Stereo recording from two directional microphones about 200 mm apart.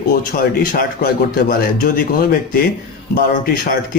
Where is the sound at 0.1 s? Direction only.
45° left (ahead or behind).